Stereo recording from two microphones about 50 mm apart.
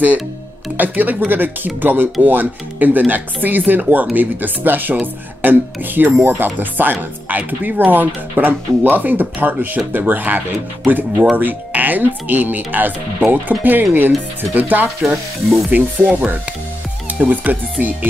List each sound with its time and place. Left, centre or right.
0.7 s speech: right
17.3 s speech: right